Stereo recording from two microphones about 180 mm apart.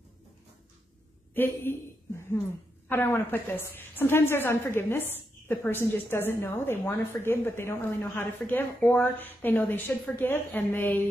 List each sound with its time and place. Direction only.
1.3 s a woman's voice: 10° left (ahead or behind)